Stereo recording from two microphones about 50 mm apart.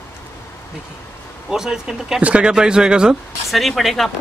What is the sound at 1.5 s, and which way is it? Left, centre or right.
Speech, centre.